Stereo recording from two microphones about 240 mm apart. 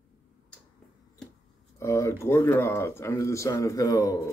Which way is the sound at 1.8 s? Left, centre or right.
Centre.